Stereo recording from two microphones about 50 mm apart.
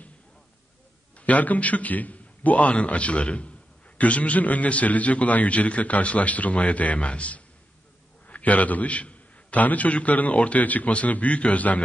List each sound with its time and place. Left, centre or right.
1.2 s a man's voice: left